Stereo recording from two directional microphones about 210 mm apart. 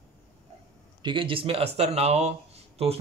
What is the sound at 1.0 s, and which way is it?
Speech, 20° right (ahead or behind).